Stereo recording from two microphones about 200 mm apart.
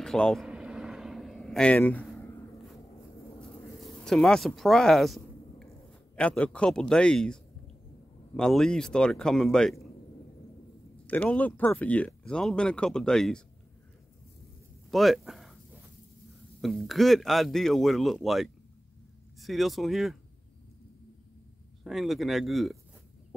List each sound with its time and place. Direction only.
0.0 s vehicle: 5° left (ahead or behind)
3.3 s a sound: 5° left (ahead or behind)
6.1 s speech: 5° left (ahead or behind)
11.1 s speech: 5° left (ahead or behind)
14.9 s speech: centre (ahead or behind)
16.6 s speech: centre (ahead or behind)
21.8 s speech: centre (ahead or behind)